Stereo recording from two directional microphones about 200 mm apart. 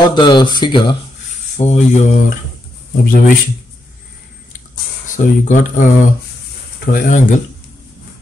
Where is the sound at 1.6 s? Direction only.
35° left (ahead or behind).